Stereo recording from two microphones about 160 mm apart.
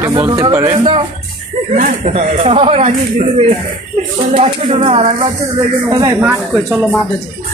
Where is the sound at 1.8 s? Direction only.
45° right (ahead or behind).